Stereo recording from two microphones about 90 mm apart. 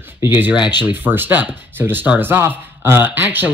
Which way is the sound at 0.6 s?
55° left (ahead or behind).